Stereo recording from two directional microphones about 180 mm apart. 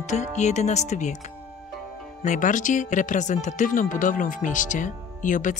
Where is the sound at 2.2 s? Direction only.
45° left (ahead or behind).